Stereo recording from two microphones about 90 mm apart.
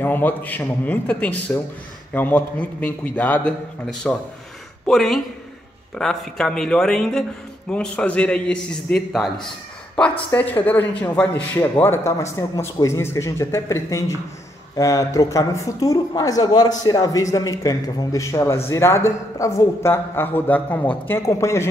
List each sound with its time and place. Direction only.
0.0 s a man's voice: 20° left (ahead or behind)
21.3 s speech: 30° left (ahead or behind)